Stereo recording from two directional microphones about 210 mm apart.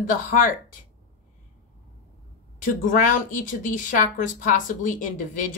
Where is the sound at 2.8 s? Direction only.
40° left (ahead or behind).